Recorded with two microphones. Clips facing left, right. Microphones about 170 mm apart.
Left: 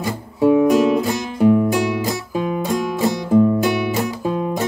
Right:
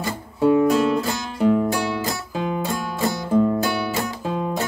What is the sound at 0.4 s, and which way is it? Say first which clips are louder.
Music: left 3 dB; 10° left (ahead or behind).